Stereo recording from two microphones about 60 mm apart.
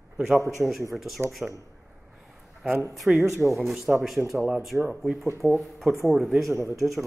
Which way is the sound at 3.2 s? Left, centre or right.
Right.